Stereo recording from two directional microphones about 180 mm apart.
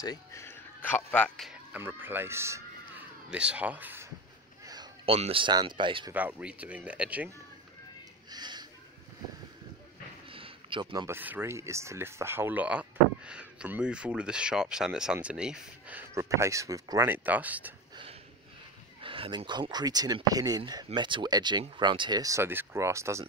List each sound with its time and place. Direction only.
0.0 s speech: 20° left (ahead or behind); by 4.1 s 10° right (ahead or behind)
4.6 s speech: 25° right (ahead or behind)
6.1 s speech: 10° right (ahead or behind)
8.3 s a sound: 25° right (ahead or behind)
10.3 s a sound: 30° right (ahead or behind)
11.1 s speech: 10° right (ahead or behind)
18.9 s speech: 30° right (ahead or behind)